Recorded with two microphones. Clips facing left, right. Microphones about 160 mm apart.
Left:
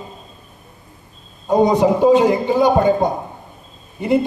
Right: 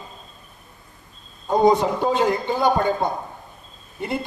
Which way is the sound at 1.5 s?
10° left (ahead or behind).